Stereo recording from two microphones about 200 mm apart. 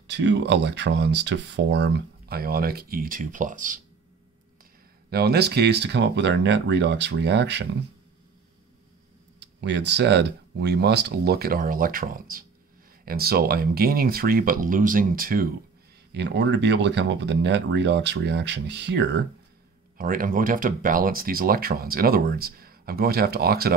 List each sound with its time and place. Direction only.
0.0 s speech: 65° right (ahead or behind); by 3.8 s 40° right (ahead or behind)
5.1 s speech: 55° right (ahead or behind)
9.4 s speech: 60° right (ahead or behind)
16.1 s speech: 60° right (ahead or behind)
20.0 s speech: 45° right (ahead or behind)